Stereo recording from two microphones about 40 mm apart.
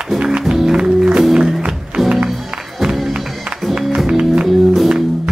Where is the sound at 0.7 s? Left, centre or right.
Right.